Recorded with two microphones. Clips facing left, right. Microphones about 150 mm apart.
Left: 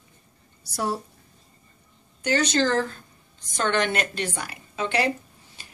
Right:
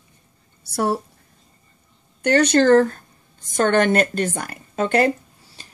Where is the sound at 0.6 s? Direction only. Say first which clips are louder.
Right 6 dB; 60° right (ahead or behind).